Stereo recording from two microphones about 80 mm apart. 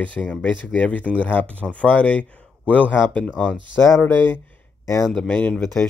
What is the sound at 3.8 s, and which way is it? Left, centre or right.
Speech, left.